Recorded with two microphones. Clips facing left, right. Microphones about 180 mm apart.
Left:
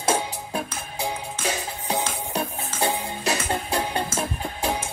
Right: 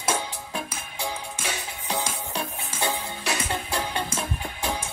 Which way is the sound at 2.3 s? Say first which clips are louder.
Left 4 dB; 35° left (ahead or behind).